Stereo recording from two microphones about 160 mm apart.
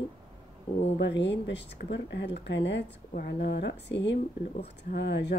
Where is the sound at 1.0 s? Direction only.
90° left.